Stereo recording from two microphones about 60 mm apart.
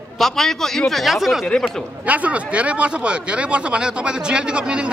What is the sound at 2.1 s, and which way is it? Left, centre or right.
Speech, right.